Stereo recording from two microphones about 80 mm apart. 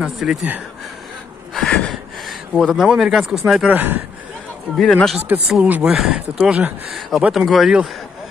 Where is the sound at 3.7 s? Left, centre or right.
Right.